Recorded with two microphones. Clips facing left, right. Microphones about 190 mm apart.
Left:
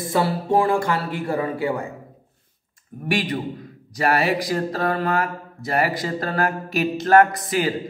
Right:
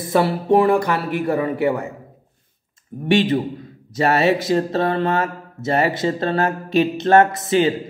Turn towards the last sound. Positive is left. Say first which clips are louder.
# right 5 dB
turn(degrees=-25)  # may be behind; listen again after turning